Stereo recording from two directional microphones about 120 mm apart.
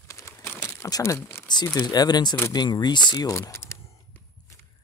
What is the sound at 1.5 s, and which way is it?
Speech, 35° left (ahead or behind).